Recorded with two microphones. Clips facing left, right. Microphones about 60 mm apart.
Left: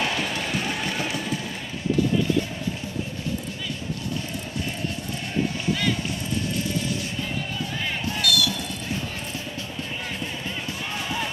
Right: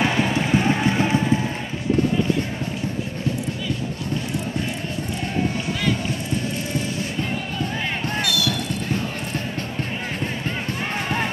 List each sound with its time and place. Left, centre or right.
0.0 s run: right
8.2 s basketball bounce: right